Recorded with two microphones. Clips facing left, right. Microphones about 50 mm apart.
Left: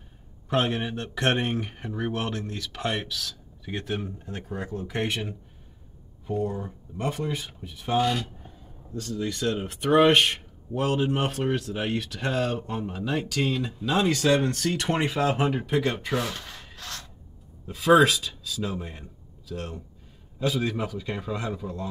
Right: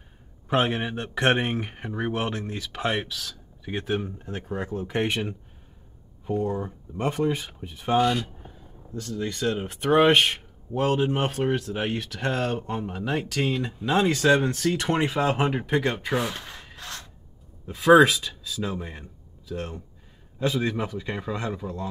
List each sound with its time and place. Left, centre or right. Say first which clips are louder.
0.5 s speech: right 2 dB; centre
4.7 s speech: right 3 dB; centre
8.0 s speech: right 2 dB; centre
17.6 s speech: right 3 dB; centre